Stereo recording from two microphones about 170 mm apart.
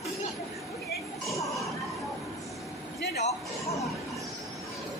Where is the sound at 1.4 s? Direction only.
Centre (ahead or behind).